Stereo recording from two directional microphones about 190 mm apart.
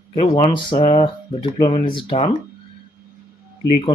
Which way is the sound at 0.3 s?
25° left (ahead or behind).